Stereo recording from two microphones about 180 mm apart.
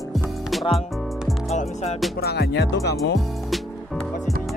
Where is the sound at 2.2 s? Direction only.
60° left (ahead or behind).